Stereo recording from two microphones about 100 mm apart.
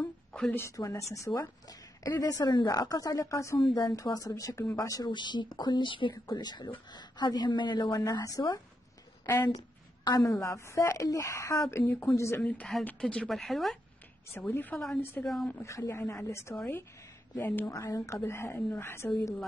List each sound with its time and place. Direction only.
0.0 s a sound: 10° left (ahead or behind)
0.6 s a woman's voice: 30° left (ahead or behind)
5.1 s a woman's voice: 50° left (ahead or behind)
6.2 s a woman's voice: 45° left (ahead or behind)
10.0 s a woman's voice: 40° left (ahead or behind)
10.4 s speech: 30° left (ahead or behind)
12.4 s speech: 10° left (ahead or behind)
13.3 s speech: centre (ahead or behind)
14.5 s speech: 20° left (ahead or behind)
15.2 s speech: 5° left (ahead or behind)
15.6 s speech: 30° left (ahead or behind)
17.6 s speech: 30° left (ahead or behind)